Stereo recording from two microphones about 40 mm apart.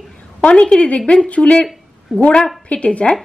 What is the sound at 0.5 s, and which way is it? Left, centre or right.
Speech, left.